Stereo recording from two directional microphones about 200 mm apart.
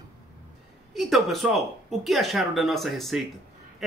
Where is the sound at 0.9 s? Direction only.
Centre (ahead or behind).